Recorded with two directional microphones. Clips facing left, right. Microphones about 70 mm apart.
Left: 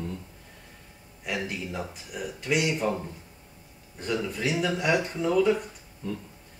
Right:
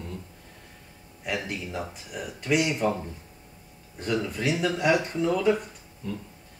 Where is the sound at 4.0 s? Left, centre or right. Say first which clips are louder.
Right 1 dB; centre.